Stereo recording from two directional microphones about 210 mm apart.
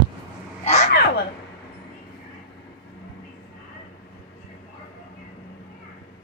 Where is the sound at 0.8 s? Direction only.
50° left (ahead or behind).